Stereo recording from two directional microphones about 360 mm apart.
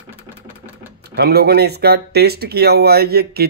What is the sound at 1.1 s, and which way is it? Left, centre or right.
Speech, right.